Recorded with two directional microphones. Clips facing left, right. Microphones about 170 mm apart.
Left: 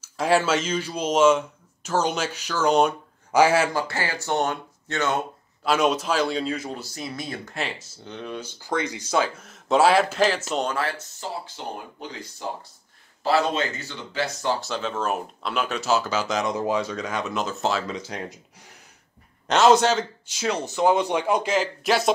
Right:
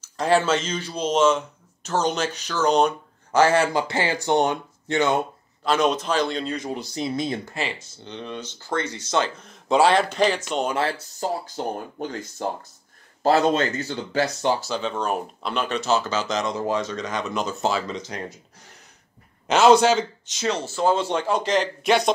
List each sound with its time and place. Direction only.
0.0 s speech: 5° left (ahead or behind)
3.7 s speech: 20° right (ahead or behind)
5.6 s a man's voice: 5° left (ahead or behind)
6.7 s speech: 20° right (ahead or behind)
7.4 s speech: centre (ahead or behind)
10.8 s speech: 30° right (ahead or behind)
14.6 s speech: centre (ahead or behind)
19.4 s a man's voice: centre (ahead or behind)